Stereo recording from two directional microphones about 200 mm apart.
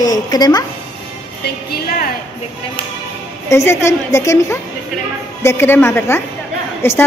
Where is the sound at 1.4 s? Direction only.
50° left (ahead or behind).